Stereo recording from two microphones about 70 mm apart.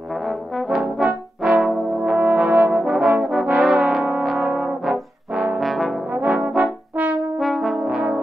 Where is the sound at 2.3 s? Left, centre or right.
Centre.